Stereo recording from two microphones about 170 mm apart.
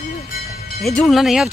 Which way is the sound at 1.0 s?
Centre (ahead or behind).